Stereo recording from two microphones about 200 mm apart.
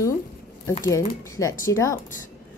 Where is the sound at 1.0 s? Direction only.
15° left (ahead or behind).